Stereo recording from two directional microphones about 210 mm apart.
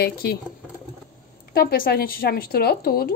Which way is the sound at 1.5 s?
45° left (ahead or behind).